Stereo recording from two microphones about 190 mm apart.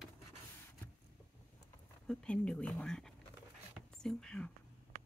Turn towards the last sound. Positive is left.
turn(degrees=5)  # may be behind; listen again after turning